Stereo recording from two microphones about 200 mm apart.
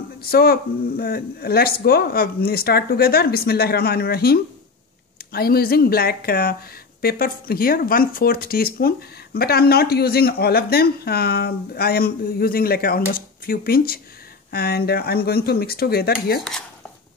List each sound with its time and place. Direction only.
0.2 s speech: 50° left (ahead or behind)